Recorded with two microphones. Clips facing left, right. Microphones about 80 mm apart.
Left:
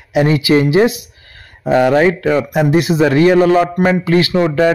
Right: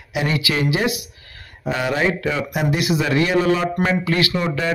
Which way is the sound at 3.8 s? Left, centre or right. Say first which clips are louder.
Left 7 dB; left.